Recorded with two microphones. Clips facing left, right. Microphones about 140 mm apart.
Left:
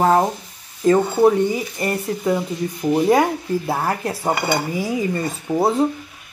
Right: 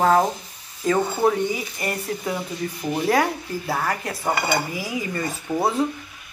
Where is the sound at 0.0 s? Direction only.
15° left (ahead or behind).